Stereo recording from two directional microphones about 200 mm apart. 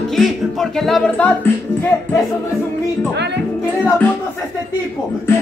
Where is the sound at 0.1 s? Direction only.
Centre (ahead or behind).